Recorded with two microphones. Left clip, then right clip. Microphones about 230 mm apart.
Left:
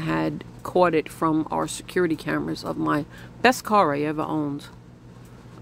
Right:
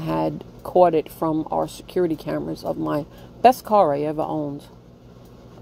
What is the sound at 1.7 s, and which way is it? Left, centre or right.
A man's voice, left.